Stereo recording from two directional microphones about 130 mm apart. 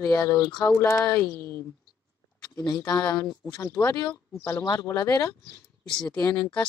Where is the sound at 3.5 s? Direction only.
20° left (ahead or behind).